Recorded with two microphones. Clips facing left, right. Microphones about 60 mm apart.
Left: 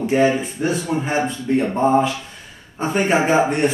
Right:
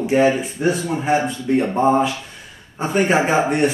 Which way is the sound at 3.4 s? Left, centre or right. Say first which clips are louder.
Right 1 dB; centre.